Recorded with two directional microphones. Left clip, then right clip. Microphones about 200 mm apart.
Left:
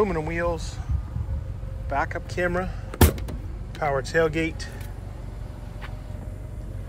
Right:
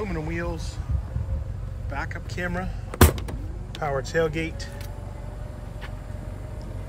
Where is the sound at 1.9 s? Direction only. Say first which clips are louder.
Left 7 dB; 5° right (ahead or behind).